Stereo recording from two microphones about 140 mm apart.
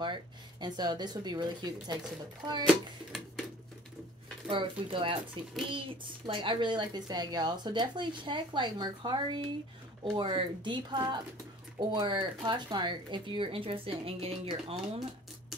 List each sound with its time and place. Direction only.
0.0 s a woman's voice: 35° right (ahead or behind)
4.5 s a woman's voice: 35° right (ahead or behind)